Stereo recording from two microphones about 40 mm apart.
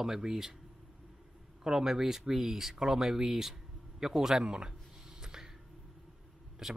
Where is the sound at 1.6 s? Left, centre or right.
Centre.